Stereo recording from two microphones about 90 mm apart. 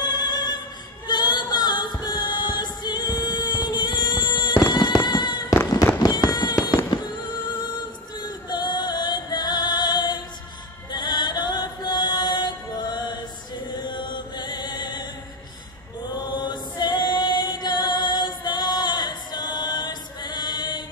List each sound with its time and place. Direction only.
0.0 s opera: 55° left (ahead or behind)
1.0 s music: 50° left (ahead or behind)
4.7 s fireworks: 55° left (ahead or behind)
8.5 s music: 55° left (ahead or behind)
10.9 s mantra: 55° left (ahead or behind)
13.7 s chant: 60° left (ahead or behind)
16.2 s choir: 55° left (ahead or behind)